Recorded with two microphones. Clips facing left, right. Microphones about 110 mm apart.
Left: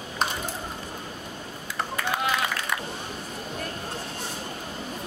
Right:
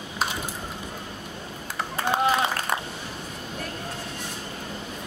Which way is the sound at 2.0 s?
30° right (ahead or behind).